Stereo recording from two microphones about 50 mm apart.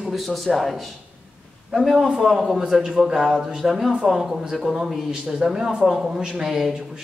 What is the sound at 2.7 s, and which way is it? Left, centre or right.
Speech, centre.